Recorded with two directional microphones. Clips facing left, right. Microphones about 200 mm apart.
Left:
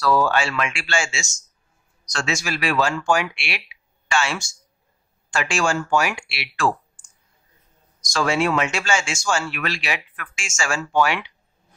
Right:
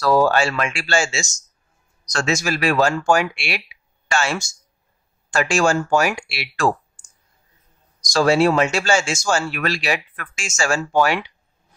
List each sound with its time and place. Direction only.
0.0 s speech: 40° right (ahead or behind)